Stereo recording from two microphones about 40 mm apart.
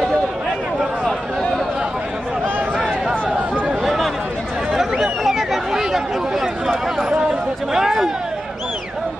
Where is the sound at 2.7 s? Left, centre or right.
Centre.